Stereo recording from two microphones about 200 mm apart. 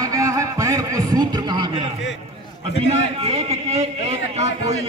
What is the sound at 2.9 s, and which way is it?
A man's voice, 30° right (ahead or behind).